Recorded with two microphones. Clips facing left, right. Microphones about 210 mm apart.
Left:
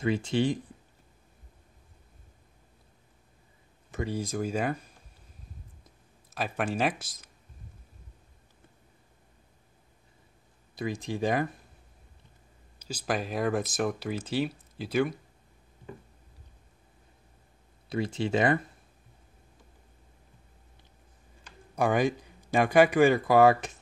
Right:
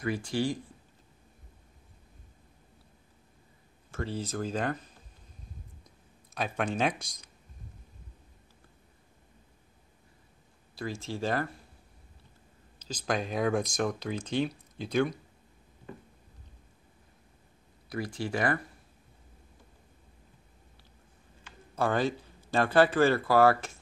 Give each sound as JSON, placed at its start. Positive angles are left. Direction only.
{"t": 0.0, "sound": "speech", "side_deg": 25}
{"t": 3.9, "sound": "speech", "side_deg": 15}
{"t": 5.9, "sound": "speech", "side_deg": 5}
{"t": 10.7, "sound": "speech", "side_deg": 20}
{"t": 12.7, "sound": "speech", "side_deg": 10}
{"t": 17.8, "sound": "speech", "side_deg": 25}
{"t": 21.7, "sound": "speech", "side_deg": 15}